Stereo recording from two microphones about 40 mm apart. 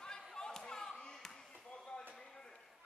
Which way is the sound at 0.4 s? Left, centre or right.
Centre.